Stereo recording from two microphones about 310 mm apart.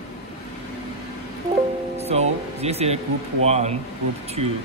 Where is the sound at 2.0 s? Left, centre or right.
Right.